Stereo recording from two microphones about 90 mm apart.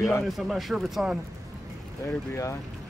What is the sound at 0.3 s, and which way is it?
Speech, centre (ahead or behind).